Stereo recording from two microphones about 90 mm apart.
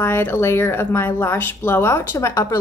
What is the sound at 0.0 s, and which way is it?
A woman's voice, 25° left (ahead or behind).